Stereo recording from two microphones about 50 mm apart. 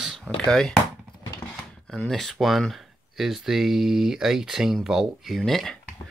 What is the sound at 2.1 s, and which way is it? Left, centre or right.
Speech, centre.